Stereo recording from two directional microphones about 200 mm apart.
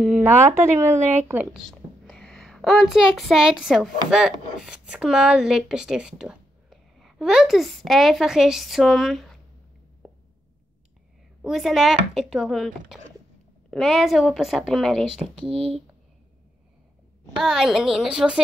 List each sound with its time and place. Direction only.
0.0 s speech: 5° right (ahead or behind)
1.7 s a sound: 5° left (ahead or behind)
4.1 s speech: centre (ahead or behind)
10.0 s a sound: centre (ahead or behind)
11.4 s speech: centre (ahead or behind)
15.5 s speech: 30° right (ahead or behind)
17.4 s speech: centre (ahead or behind)